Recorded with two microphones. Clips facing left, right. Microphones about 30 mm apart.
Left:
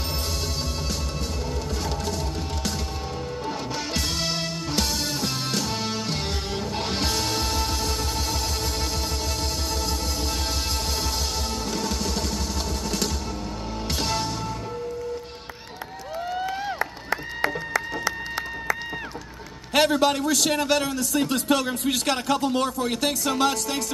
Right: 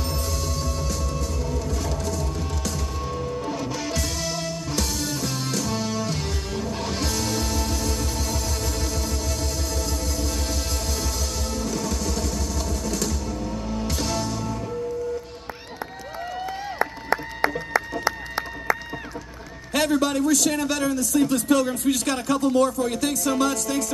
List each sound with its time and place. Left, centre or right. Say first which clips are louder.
2.0 s music: right 1 dB; left
3.9 s music: left 1 dB; left
11.7 s music: left 1 dB; left
13.8 s music: left 2 dB; left
19.7 s a man's voice: left 2 dB; left